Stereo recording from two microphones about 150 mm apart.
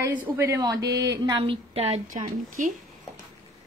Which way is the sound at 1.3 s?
35° right (ahead or behind).